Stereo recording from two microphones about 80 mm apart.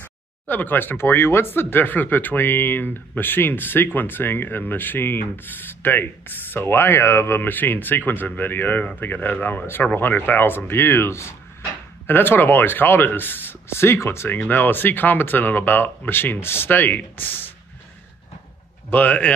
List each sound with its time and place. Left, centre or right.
0.0 s speech: left
18.9 s speech: left